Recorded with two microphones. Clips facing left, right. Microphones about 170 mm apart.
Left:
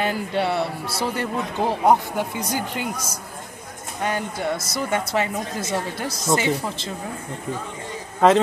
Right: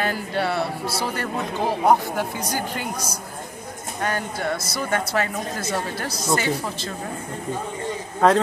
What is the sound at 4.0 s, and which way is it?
Speech, 15° left (ahead or behind).